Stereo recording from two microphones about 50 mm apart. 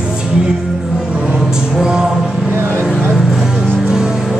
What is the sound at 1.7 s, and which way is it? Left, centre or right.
Music, centre.